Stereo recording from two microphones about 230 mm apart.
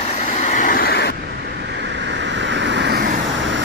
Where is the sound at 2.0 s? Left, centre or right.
Right.